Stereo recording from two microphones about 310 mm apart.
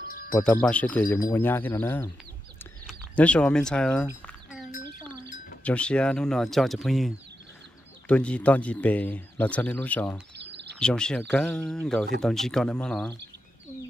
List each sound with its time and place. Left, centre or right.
0.4 s speech: centre
2.6 s a sound: centre
5.6 s speech: centre
10.3 s bird: right
10.8 s speech: centre